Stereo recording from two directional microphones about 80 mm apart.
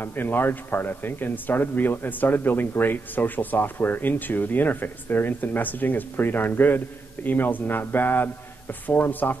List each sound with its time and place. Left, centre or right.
0.0 s speech: left